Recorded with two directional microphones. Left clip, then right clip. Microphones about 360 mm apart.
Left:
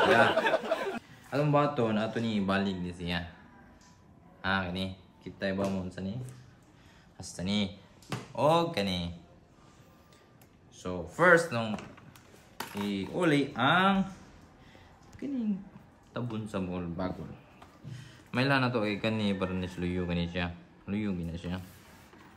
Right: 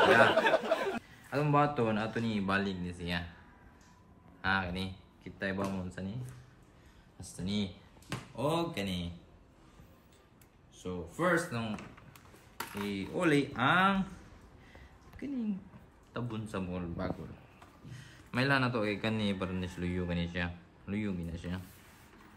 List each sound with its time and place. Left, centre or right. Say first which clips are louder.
0.0 s a man's voice: even; centre
4.4 s speech: left 1 dB; centre
7.2 s speech: left 5 dB; centre
8.5 s speech: left 7 dB; centre
10.8 s speech: left 7 dB; centre
11.2 s speech: left 8 dB; centre
15.1 s speech: left 3 dB; centre